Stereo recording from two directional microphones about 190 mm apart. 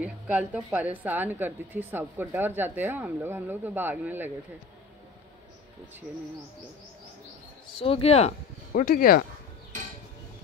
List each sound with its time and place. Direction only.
0.0 s speech: 5° right (ahead or behind)
7.8 s speech: 30° left (ahead or behind)
8.7 s speech: 50° left (ahead or behind)